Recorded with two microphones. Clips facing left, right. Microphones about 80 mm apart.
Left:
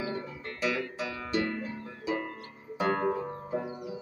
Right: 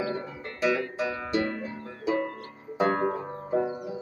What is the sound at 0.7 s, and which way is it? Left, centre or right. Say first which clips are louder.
Music: right 5 dB; right.